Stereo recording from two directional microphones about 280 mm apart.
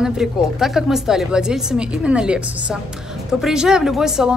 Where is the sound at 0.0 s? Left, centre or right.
Centre.